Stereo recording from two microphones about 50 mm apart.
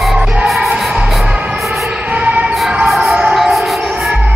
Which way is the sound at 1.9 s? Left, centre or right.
Right.